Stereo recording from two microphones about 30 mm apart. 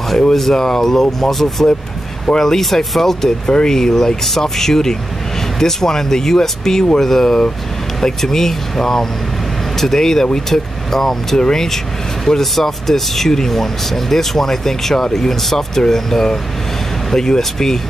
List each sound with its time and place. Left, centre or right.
0.3 s speech: centre
2.6 s speech: centre